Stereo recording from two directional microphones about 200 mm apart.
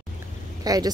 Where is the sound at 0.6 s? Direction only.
20° right (ahead or behind).